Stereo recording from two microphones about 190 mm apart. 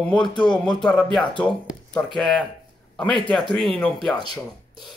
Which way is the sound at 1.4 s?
5° left (ahead or behind).